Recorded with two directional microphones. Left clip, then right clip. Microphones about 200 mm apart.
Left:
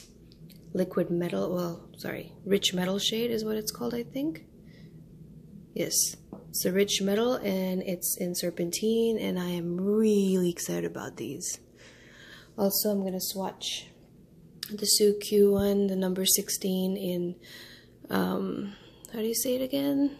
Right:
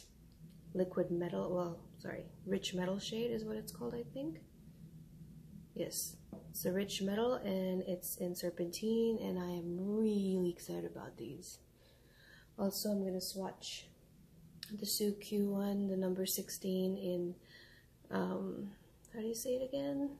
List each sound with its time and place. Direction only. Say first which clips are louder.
0.7 s speech: left 8 dB; 40° left (ahead or behind)
6.6 s speech: left 12 dB; 40° left (ahead or behind)
12.5 s speech: left 11 dB; 40° left (ahead or behind)
14.6 s speech: left 14 dB; 40° left (ahead or behind)